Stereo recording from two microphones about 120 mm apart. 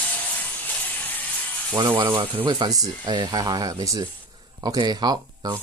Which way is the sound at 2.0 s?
40° right (ahead or behind).